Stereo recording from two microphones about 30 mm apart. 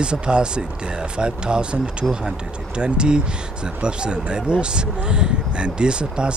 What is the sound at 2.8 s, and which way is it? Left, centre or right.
Speech, right.